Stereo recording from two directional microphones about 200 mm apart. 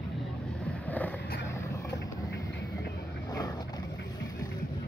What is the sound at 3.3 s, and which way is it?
Vehicle, 20° left (ahead or behind).